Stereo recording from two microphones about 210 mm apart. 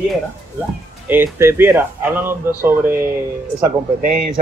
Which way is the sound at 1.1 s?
10° right (ahead or behind).